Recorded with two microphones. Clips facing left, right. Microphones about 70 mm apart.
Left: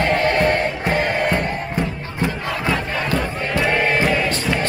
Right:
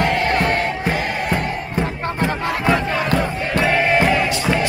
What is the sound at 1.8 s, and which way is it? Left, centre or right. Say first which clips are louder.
Crowd: right 5 dB; right.